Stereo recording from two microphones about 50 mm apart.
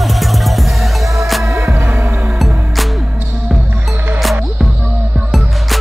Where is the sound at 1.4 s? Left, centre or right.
Right.